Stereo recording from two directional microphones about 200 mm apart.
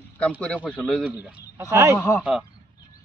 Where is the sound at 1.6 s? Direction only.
15° right (ahead or behind).